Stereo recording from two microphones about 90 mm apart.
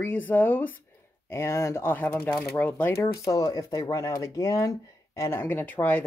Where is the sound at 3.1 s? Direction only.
45° left (ahead or behind).